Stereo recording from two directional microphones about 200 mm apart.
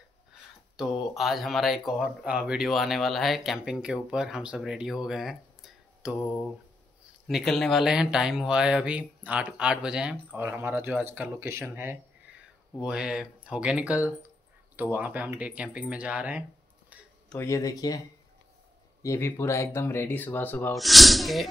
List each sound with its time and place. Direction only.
0.7 s speech: centre (ahead or behind)
7.2 s speech: centre (ahead or behind)
17.3 s speech: 15° left (ahead or behind)
19.0 s speech: 10° left (ahead or behind)